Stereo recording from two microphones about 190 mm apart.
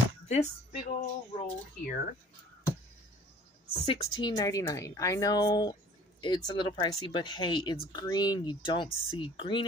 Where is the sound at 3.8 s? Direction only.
30° left (ahead or behind).